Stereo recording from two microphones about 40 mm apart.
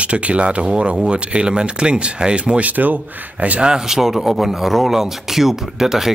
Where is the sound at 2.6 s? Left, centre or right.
Right.